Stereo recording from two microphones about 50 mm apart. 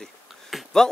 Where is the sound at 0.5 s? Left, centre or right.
Centre.